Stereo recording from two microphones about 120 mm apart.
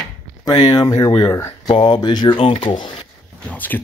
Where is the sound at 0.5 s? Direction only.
35° left (ahead or behind).